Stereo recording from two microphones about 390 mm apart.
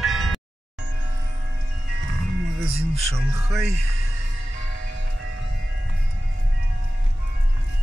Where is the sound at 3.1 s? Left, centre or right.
Centre.